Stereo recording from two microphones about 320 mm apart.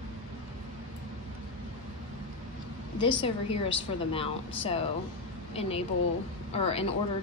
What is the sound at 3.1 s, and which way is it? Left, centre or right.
A woman's voice, centre.